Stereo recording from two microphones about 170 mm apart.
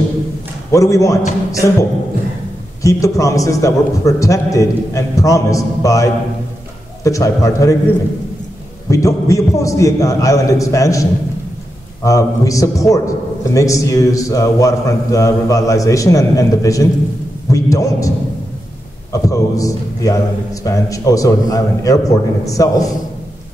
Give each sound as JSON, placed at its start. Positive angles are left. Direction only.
{"t": 0.7, "sound": "a man's voice", "side_deg": 20}
{"t": 2.8, "sound": "a man's voice", "side_deg": 20}
{"t": 8.9, "sound": "a man's voice", "side_deg": 20}
{"t": 19.1, "sound": "a man's voice", "side_deg": 20}